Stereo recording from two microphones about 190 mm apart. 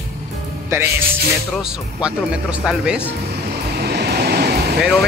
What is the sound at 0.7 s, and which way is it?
Speech, 15° right (ahead or behind).